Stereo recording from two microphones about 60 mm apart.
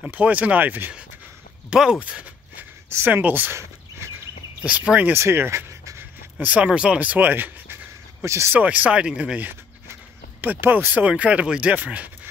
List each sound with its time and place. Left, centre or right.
0.0 s speech: right
1.7 s speech: centre
3.1 s speech: right
4.6 s speech: right
5.1 s speech: right
6.4 s speech: centre; by 8.5 s right
8.5 s speech: right
10.4 s speech: right